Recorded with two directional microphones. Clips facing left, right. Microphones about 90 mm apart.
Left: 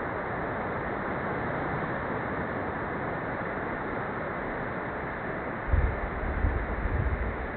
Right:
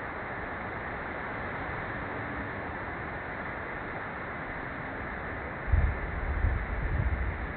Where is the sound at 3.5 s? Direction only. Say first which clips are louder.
Left 5 dB; 45° left (ahead or behind).